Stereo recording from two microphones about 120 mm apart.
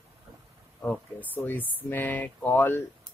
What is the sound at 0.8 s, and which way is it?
Speech, 15° left (ahead or behind).